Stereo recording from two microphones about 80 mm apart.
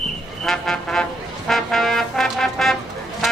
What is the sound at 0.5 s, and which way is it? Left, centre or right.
Vehicle, centre.